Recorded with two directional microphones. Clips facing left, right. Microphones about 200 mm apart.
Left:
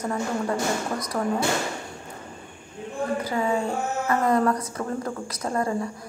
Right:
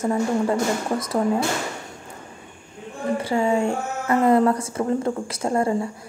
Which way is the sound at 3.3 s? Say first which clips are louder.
Right 7 dB; 25° right (ahead or behind).